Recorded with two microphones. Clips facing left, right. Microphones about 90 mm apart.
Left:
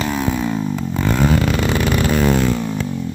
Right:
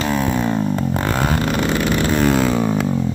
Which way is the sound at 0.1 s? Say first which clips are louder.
Right 1 dB; centre (ahead or behind).